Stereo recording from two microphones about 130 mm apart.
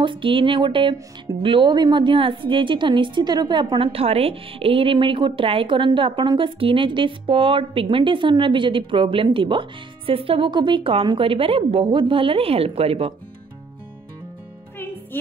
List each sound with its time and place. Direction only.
0.0 s a woman's voice: 40° right (ahead or behind)